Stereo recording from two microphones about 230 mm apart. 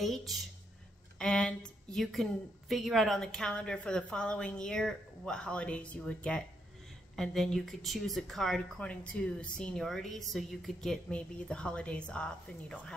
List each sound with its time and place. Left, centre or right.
0.0 s a woman's voice: centre